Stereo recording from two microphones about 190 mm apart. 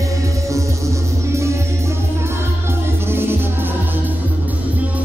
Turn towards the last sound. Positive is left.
turn(degrees=-10)  # may be behind; listen again after turning